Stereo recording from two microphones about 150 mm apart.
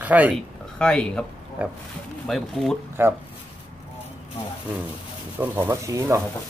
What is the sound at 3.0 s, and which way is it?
Speech, 15° right (ahead or behind).